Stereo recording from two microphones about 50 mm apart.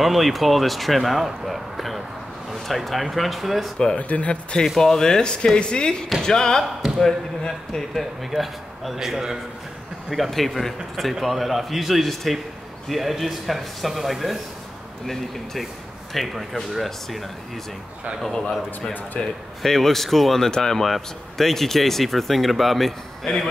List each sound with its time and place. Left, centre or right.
0.0 s speech: centre
3.7 s speech: centre
4.1 s speech: left
4.7 s speech: centre
8.0 s speech: centre
16.1 s speech: centre
18.9 s speech: centre